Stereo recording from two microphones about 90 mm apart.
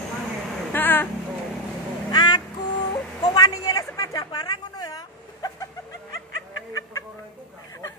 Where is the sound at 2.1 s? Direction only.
50° left (ahead or behind).